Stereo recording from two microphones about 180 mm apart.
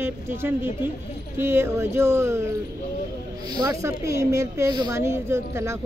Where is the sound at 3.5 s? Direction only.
20° right (ahead or behind).